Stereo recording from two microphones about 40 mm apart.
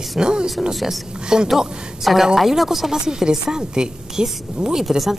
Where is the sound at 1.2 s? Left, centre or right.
Centre.